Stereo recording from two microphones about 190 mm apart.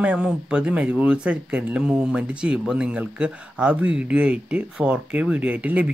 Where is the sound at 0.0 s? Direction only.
5° right (ahead or behind).